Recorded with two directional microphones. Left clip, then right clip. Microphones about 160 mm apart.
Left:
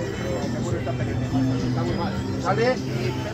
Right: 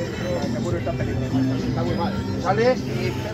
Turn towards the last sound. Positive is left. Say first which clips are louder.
# right 2 dB
turn(degrees=-35)  # may be behind; listen again after turning